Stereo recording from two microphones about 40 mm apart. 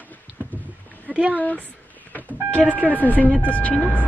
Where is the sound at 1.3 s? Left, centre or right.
Left.